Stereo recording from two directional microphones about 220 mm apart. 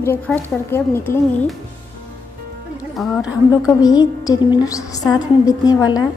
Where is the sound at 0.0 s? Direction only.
10° left (ahead or behind).